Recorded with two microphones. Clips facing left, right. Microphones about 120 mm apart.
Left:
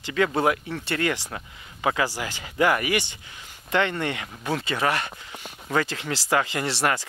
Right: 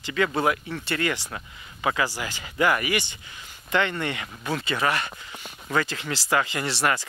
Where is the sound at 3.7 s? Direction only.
45° left (ahead or behind).